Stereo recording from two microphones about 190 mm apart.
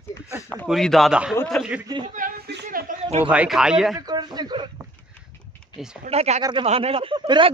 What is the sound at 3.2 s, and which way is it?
Speech, 5° right (ahead or behind).